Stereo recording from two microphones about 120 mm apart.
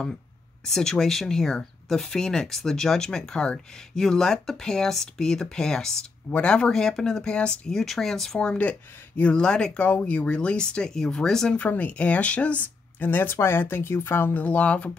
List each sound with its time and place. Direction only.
0.7 s speech: 5° left (ahead or behind)